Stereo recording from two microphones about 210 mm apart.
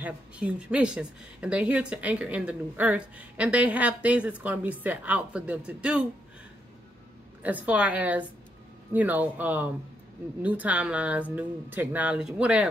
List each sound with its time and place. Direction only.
0.0 s a woman's voice: 5° right (ahead or behind)
7.4 s a woman's voice: 5° right (ahead or behind)